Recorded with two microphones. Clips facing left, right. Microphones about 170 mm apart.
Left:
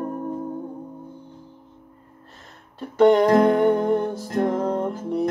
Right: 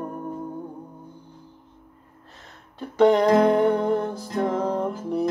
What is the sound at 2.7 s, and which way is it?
Music, centre (ahead or behind).